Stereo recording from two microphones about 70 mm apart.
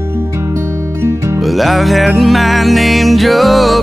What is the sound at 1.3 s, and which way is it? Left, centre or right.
Music, centre.